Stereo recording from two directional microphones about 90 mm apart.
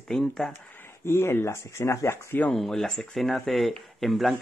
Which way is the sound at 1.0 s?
30° left (ahead or behind).